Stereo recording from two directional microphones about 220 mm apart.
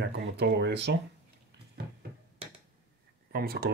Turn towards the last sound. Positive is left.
turn(degrees=-45)  # may be behind; listen again after turning